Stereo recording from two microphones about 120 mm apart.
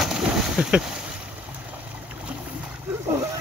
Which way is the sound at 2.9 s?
25° right (ahead or behind).